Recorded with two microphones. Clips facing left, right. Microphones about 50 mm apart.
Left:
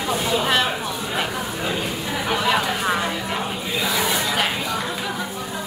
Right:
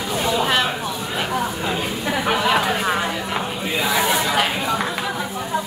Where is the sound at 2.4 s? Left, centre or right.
Centre.